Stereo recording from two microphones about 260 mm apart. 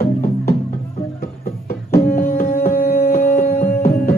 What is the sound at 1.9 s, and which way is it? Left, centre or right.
Music, left.